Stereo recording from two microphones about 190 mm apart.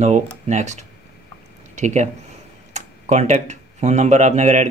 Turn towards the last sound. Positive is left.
turn(degrees=-40)  # may be behind; listen again after turning